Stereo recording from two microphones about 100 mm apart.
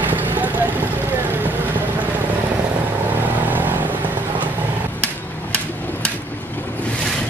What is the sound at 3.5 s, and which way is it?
Vehicle, 20° right (ahead or behind).